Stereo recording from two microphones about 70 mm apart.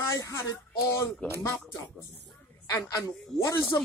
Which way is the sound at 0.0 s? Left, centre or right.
Left.